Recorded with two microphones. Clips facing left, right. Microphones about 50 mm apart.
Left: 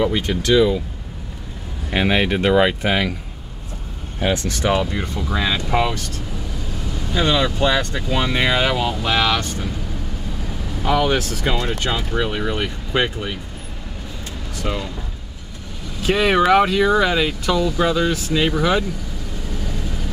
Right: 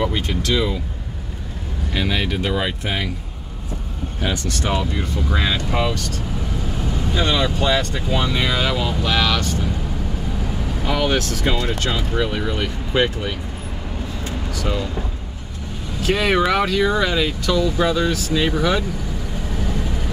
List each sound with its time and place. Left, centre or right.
0.0 s speech: centre
1.9 s speech: left
4.2 s speech: left
5.3 s speech: centre
5.7 s speech: centre
7.2 s speech: centre
7.7 s speech: centre
8.4 s speech: left
10.8 s speech: centre
14.7 s speech: centre
16.1 s speech: centre